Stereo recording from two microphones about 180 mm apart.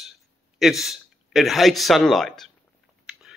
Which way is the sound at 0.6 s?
Centre (ahead or behind).